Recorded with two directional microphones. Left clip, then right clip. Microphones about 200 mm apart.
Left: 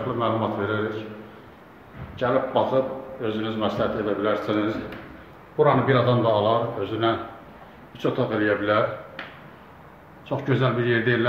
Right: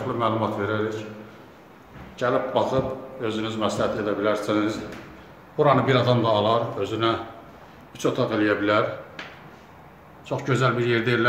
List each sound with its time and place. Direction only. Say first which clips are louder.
0.2 s speech: right 1 dB; 5° right (ahead or behind)
2.1 s a man's voice: left 1 dB; 5° right (ahead or behind)
10.2 s speech: right 1 dB; 5° right (ahead or behind)